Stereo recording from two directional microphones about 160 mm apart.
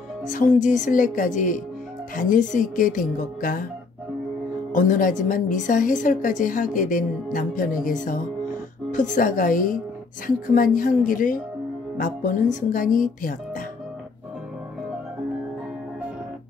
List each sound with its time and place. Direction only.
0.3 s a woman's voice: 55° left (ahead or behind)
4.7 s a woman's voice: 55° left (ahead or behind)